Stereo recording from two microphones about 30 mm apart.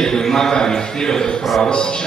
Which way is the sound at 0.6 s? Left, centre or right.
Left.